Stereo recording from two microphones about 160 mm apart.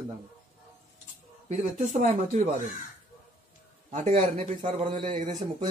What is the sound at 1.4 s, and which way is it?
Speech, 45° right (ahead or behind).